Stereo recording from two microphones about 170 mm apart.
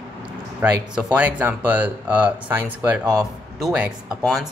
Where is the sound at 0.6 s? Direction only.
10° right (ahead or behind).